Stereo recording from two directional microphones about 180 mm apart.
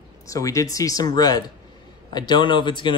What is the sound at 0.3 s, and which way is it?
Speech, 20° left (ahead or behind).